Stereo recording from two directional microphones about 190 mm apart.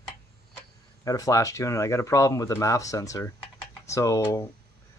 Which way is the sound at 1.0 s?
15° left (ahead or behind).